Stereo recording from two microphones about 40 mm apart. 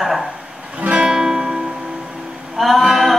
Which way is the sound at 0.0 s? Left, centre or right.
Centre.